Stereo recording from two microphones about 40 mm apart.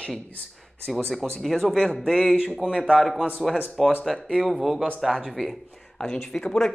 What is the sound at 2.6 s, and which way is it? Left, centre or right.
Speech, right.